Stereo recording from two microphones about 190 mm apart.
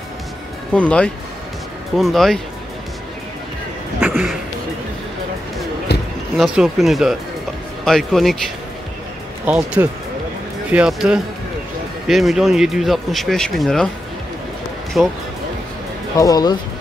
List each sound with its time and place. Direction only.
0.7 s speech: 5° left (ahead or behind)
4.1 s speech: centre (ahead or behind)
6.3 s speech: centre (ahead or behind)
9.5 s speech: 5° right (ahead or behind)
10.7 s speech: 5° right (ahead or behind)
15.0 s speech: centre (ahead or behind)
16.2 s speech: 20° left (ahead or behind)